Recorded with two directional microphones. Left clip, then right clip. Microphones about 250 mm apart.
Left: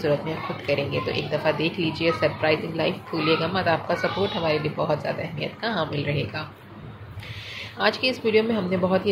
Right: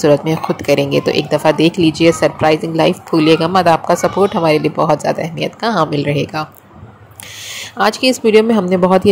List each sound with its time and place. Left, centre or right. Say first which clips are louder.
0.0 s speech: right 12 dB; right
7.4 s speech: right 9 dB; right